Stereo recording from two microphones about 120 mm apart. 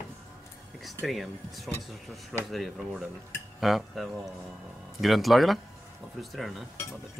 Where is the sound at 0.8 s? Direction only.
Centre (ahead or behind).